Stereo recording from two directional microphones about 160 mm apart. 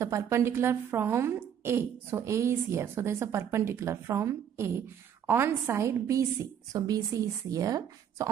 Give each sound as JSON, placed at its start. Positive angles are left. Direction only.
{"t": 0.0, "sound": "a woman's voice", "side_deg": -15}